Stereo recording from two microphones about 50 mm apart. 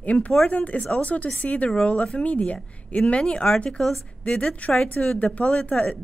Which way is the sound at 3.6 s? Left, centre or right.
Centre.